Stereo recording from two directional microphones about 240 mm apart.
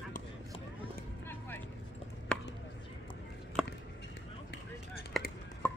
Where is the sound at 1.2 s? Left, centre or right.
Centre.